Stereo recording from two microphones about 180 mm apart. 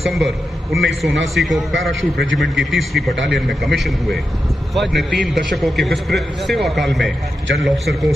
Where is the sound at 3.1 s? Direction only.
90° right.